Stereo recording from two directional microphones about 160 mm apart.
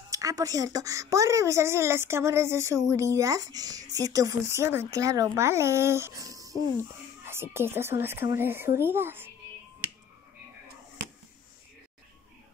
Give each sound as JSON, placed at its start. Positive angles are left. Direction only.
{"t": 0.1, "sound": "speech", "side_deg": -20}